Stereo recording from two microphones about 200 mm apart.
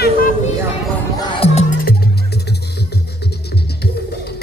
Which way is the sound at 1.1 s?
20° left (ahead or behind).